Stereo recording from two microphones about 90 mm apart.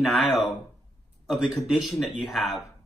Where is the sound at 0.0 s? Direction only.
Centre (ahead or behind).